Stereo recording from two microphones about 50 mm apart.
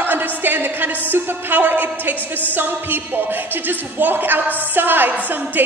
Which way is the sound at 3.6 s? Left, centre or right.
Right.